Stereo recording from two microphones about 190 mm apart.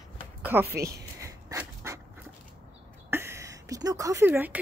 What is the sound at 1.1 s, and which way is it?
Dog, 15° right (ahead or behind).